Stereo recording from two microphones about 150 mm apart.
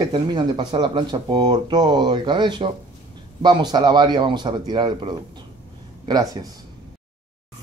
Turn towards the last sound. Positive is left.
turn(degrees=-25)  # may be behind; listen again after turning